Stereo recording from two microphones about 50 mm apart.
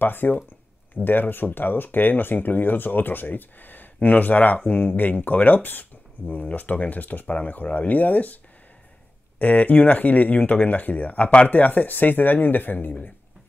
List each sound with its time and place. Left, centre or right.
0.0 s speech: left
9.4 s speech: left